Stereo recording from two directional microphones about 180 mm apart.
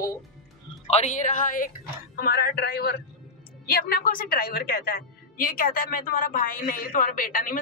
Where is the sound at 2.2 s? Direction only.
60° left (ahead or behind).